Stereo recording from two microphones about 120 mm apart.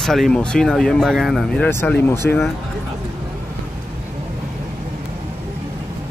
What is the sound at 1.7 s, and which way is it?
Speech, 15° left (ahead or behind).